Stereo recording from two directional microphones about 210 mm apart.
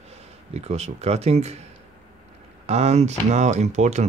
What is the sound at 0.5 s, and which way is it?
Speech, 30° right (ahead or behind).